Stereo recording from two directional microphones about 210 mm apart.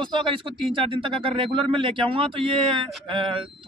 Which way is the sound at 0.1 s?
25° right (ahead or behind).